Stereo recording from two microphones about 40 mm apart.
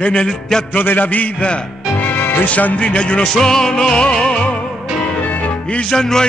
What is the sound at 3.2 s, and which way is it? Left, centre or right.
Music, centre.